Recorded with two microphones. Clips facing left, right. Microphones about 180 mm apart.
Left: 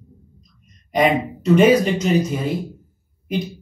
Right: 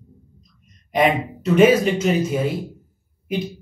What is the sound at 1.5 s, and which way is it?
Speech, 5° right (ahead or behind).